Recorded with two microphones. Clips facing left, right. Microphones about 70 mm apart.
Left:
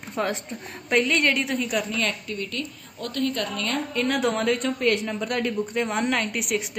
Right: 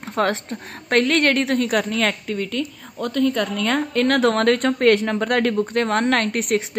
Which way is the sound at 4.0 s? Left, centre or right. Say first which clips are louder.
Right 6 dB; right.